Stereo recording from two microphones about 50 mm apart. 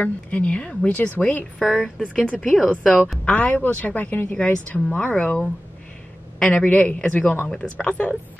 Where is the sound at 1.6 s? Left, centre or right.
Centre.